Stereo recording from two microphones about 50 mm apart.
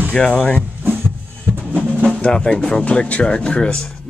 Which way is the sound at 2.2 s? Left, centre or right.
Centre.